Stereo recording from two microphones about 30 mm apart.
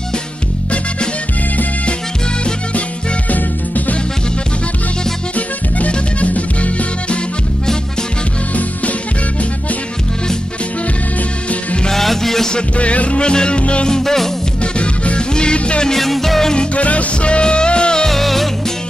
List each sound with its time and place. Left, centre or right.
3.3 s music: left
5.9 s music: left
11.9 s music: centre
12.7 s music: left
13.2 s music: left
13.6 s music: left
13.8 s music: left
14.6 s music: left
16.0 s music: centre
16.5 s music: left
18.0 s music: centre